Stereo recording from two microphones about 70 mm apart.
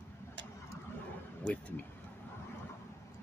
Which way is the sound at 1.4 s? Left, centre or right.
Centre.